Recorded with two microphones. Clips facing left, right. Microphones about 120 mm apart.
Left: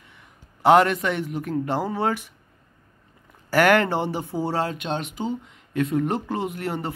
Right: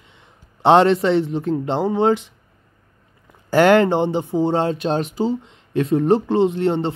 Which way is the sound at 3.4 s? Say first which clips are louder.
Right 5 dB; 25° right (ahead or behind).